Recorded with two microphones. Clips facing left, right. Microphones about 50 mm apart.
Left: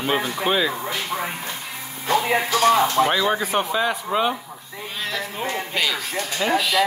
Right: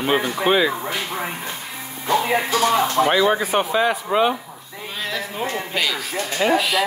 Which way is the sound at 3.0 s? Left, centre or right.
Centre.